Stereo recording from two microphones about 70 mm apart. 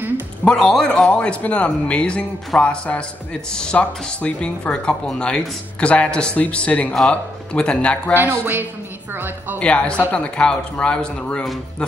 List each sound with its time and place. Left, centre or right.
0.5 s speech: centre
8.1 s speech: right
9.6 s speech: centre